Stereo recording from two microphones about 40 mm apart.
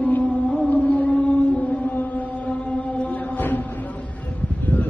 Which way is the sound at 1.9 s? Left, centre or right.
Left.